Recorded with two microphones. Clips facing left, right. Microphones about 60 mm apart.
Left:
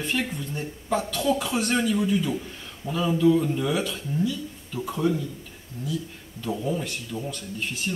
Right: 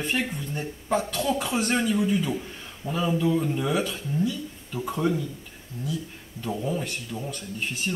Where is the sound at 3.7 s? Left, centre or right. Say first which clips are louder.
Even; right.